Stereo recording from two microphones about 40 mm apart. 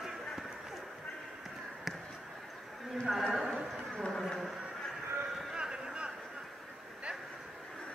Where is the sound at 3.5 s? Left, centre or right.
Centre.